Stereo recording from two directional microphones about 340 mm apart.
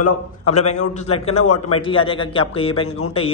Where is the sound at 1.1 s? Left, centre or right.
Centre.